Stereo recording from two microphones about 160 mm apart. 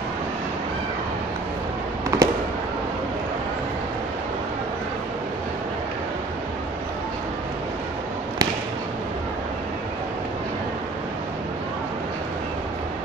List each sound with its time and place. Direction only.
2.1 s fireworks: 20° right (ahead or behind)